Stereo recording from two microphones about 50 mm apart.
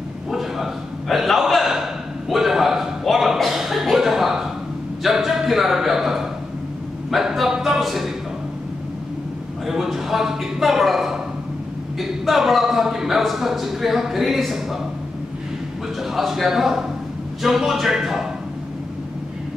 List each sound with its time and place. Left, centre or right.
0.3 s a sound: centre
7.1 s a man's voice: centre
9.7 s a man's voice: centre
16.0 s a man's voice: centre